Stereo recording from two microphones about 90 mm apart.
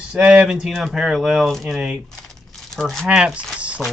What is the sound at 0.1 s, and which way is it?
Speech, 15° right (ahead or behind).